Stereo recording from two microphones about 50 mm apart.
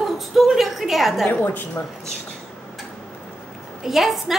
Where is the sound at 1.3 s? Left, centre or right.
Left.